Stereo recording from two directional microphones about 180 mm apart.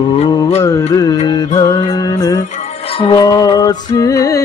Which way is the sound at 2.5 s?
30° left (ahead or behind).